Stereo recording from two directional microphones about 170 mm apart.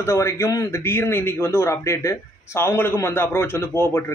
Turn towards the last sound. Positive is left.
turn(degrees=15)  # may be behind; listen again after turning